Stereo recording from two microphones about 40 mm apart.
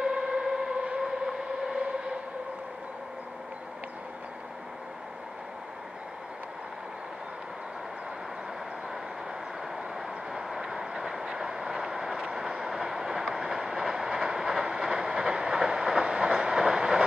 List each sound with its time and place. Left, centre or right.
0.0 s civil defense siren: centre
9.9 s train: centre